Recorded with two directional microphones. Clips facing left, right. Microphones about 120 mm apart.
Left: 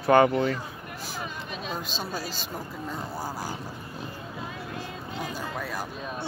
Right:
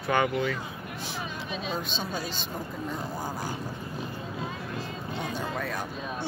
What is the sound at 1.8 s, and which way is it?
Speech, 5° left (ahead or behind).